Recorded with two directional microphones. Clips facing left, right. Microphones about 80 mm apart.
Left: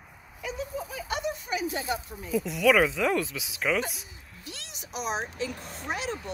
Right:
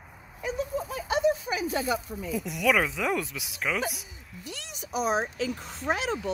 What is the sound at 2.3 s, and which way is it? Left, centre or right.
Speech, centre.